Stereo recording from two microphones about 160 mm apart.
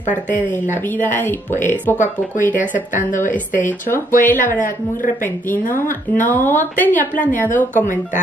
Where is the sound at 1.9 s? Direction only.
50° left (ahead or behind).